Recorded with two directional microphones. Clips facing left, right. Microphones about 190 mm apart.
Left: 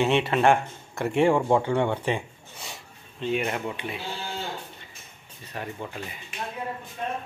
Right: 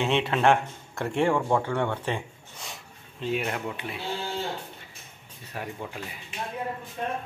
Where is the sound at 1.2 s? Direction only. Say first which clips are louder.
Left 3 dB; 15° left (ahead or behind).